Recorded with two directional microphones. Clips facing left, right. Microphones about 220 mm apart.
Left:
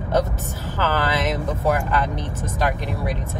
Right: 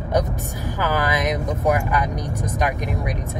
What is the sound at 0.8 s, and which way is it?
Speech, 15° right (ahead or behind).